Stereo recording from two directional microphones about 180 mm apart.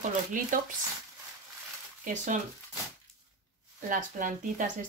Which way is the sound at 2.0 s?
45° right (ahead or behind).